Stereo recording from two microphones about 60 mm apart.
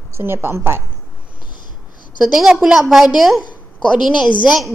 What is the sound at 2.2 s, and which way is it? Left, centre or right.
A woman's voice, centre.